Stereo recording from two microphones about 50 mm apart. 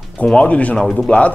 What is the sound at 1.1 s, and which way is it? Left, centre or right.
Speech, left.